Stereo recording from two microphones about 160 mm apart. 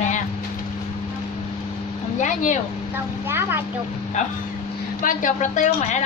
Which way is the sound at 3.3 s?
15° right (ahead or behind).